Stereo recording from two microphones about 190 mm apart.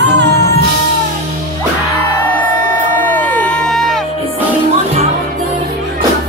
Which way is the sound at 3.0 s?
10° left (ahead or behind).